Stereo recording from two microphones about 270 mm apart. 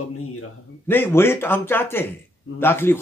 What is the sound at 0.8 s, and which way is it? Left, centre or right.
Speech, centre.